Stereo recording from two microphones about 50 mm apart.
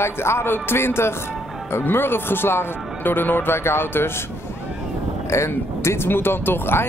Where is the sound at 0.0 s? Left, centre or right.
Left.